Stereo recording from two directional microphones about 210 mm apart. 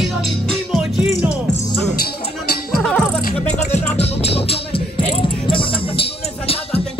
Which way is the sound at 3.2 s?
35° left (ahead or behind).